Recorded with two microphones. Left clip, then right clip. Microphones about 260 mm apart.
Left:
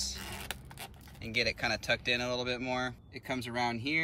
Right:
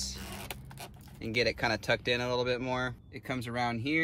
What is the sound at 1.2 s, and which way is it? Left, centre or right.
Speech, centre.